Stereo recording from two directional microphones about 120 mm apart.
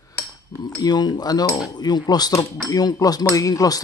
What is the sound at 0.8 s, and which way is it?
A man's voice, 35° left (ahead or behind).